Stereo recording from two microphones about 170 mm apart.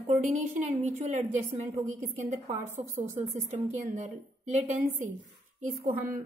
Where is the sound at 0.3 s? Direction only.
40° right (ahead or behind).